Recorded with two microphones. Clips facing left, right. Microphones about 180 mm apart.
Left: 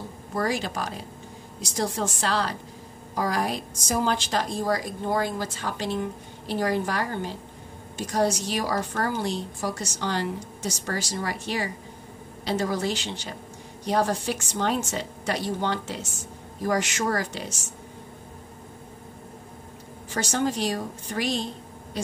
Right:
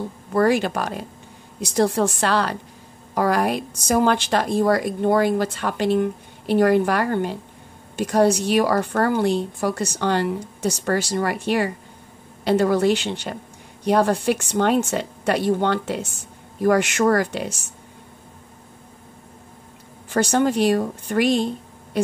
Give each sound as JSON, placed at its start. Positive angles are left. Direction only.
{"t": 0.3, "sound": "a woman's voice", "side_deg": -60}
{"t": 20.1, "sound": "a woman's voice", "side_deg": -60}
{"t": 21.9, "sound": "a sound", "side_deg": -60}